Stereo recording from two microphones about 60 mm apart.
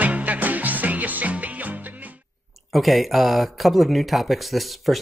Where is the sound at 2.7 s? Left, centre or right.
Centre.